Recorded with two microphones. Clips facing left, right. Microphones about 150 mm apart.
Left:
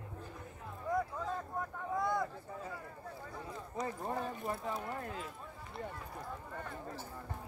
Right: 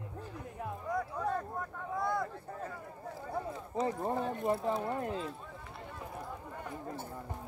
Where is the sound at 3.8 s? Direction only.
25° right (ahead or behind).